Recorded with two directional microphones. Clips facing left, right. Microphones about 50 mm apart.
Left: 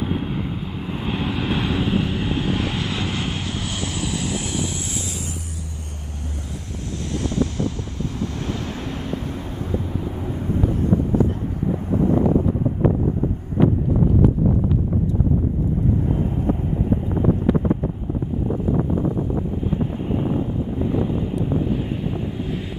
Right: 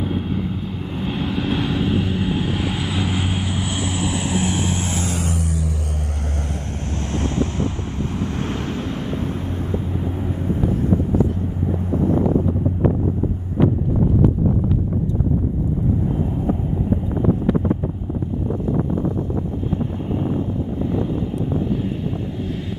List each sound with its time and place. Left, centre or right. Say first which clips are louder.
0.0 s vehicle: right 1 dB; centre; by 5.3 s right
7.3 s vehicle: right 1 dB; right
9.2 s vehicle: right 4 dB; centre